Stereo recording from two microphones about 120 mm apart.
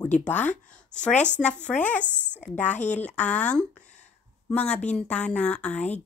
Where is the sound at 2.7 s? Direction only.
80° left.